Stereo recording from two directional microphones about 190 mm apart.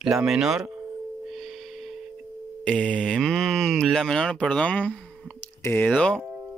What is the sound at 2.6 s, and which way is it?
Speech, 5° left (ahead or behind).